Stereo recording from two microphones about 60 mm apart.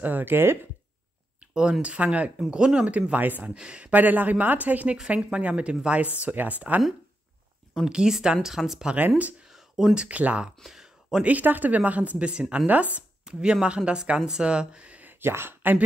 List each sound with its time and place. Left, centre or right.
0.0 s speech: right
1.5 s speech: centre
3.0 s speech: right
3.5 s speech: centre
3.9 s speech: right
7.8 s speech: centre
8.8 s speech: right
9.5 s a sound: centre
9.9 s speech: right
10.6 s a sound: centre
11.2 s speech: right
15.0 s speech: right